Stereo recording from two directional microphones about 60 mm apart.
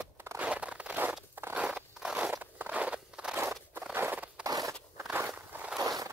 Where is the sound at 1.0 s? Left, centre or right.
Right.